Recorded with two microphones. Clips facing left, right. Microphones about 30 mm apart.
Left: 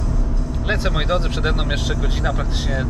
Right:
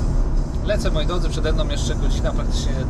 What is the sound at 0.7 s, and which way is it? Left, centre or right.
Speech, left.